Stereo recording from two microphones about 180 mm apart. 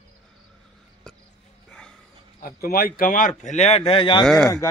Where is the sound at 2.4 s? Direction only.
55° left (ahead or behind); by 3.8 s 40° left (ahead or behind).